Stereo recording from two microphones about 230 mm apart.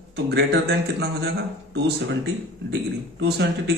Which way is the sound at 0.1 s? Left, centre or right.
Right.